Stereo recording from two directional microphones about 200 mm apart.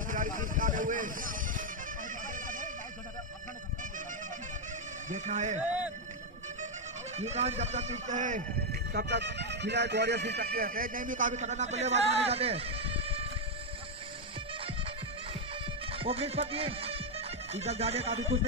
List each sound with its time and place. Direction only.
0.1 s music: 40° right (ahead or behind)
5.1 s speech: 35° right (ahead or behind)
5.6 s speech: 5° right (ahead or behind)
7.2 s speech: 35° right (ahead or behind)
8.9 s speech: 60° right (ahead or behind); by 13.3 s 30° right (ahead or behind)
15.9 s speech: 30° right (ahead or behind)